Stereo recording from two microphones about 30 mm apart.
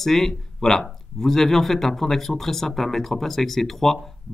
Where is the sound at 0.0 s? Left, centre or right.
Centre.